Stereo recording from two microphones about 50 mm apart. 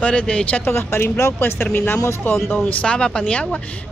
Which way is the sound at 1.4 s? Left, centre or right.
Left.